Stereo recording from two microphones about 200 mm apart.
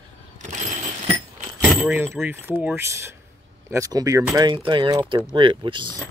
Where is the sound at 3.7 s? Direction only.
15° right (ahead or behind).